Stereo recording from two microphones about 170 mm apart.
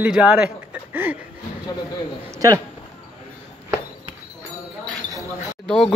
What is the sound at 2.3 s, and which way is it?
Speech, 20° right (ahead or behind).